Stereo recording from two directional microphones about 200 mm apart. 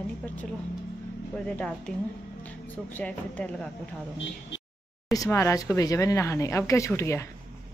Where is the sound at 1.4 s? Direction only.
5° left (ahead or behind).